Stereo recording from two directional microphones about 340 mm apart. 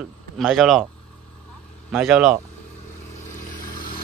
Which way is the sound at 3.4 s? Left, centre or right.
Left.